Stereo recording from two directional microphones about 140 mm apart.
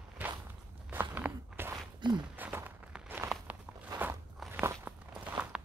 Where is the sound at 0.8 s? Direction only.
15° right (ahead or behind).